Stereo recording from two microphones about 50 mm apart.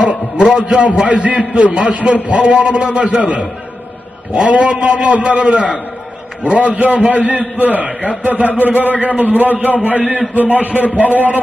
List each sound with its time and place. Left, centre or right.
0.0 s a man's voice: right